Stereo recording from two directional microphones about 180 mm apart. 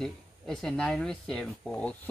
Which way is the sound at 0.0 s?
5° left (ahead or behind).